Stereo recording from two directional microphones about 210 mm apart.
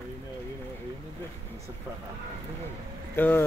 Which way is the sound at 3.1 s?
10° left (ahead or behind).